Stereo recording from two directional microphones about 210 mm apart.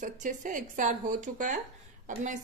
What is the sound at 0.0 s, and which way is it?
A woman's voice, 35° right (ahead or behind).